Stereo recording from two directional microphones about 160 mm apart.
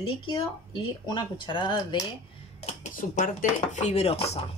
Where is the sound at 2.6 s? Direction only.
55° left (ahead or behind).